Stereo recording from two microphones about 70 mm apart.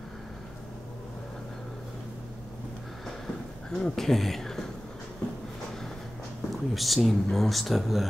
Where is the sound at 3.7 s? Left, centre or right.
Centre.